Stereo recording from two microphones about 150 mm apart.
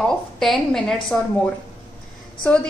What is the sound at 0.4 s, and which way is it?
Speech, centre (ahead or behind).